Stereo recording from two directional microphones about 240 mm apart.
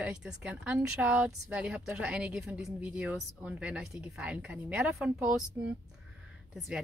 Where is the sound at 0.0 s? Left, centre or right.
Centre.